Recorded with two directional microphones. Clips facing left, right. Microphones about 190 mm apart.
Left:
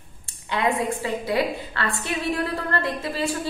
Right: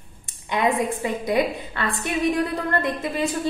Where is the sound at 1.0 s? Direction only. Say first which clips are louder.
Right 3 dB; 20° right (ahead or behind).